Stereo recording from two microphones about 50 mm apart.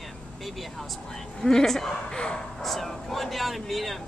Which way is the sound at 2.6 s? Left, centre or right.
Centre.